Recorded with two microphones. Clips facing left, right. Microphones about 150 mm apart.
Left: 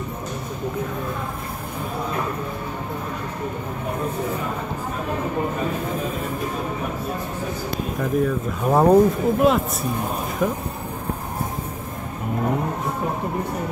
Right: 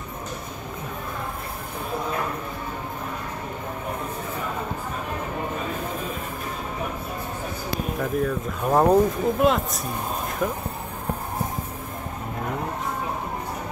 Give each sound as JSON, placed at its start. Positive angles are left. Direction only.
{"t": 8.0, "sound": "speech", "side_deg": 0}